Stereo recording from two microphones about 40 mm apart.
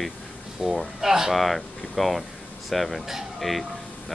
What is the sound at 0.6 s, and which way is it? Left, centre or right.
Speech, centre.